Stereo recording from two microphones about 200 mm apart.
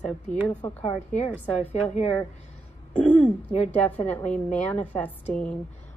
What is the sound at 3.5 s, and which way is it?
Speech, 30° left (ahead or behind).